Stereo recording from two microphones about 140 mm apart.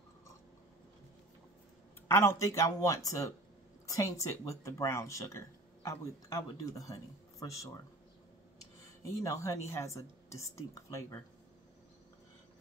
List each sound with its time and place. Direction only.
2.0 s speech: 20° left (ahead or behind)
9.2 s speech: 25° left (ahead or behind)